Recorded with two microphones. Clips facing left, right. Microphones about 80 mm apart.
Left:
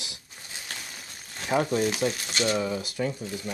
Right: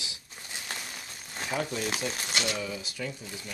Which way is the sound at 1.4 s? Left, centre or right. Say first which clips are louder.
Left 7 dB; left.